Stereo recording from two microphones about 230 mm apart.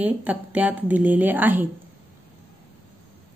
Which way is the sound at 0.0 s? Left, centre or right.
Centre.